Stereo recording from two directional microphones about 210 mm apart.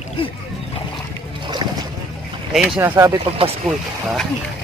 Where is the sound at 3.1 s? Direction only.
25° right (ahead or behind).